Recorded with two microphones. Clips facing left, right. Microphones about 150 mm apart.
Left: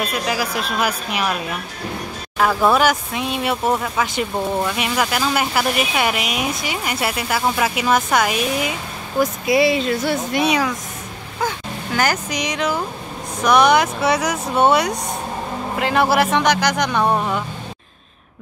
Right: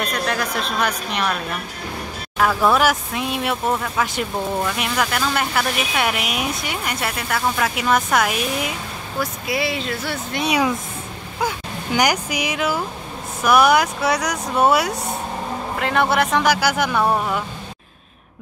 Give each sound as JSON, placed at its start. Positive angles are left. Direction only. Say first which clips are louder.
{"t": 0.0, "sound": "a woman's voice", "louder": "left 1 dB", "side_deg": 5}
{"t": 2.7, "sound": "speech", "louder": "left 1 dB", "side_deg": 0}
{"t": 9.2, "sound": "a woman's voice", "louder": "left 8 dB", "side_deg": 15}
{"t": 11.4, "sound": "speech", "louder": "even", "side_deg": -15}